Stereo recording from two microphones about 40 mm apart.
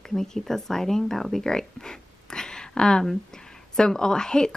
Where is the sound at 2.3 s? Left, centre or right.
Centre.